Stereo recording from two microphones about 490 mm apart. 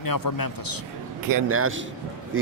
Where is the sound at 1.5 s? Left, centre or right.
Right.